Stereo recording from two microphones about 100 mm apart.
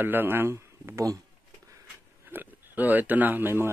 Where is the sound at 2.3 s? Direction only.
20° right (ahead or behind).